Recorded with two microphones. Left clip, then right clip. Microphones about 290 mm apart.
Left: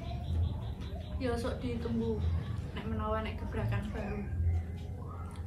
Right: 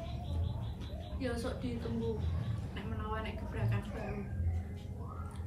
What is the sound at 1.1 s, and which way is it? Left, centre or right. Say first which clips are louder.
Speech: left 3 dB; centre.